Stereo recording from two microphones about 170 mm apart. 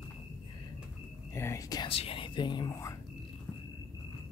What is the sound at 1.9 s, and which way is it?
Speech, 35° left (ahead or behind).